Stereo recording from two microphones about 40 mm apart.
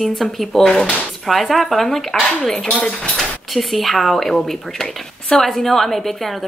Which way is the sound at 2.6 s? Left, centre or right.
Left.